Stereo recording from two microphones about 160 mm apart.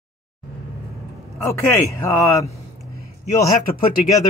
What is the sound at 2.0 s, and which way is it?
Speech, 20° left (ahead or behind).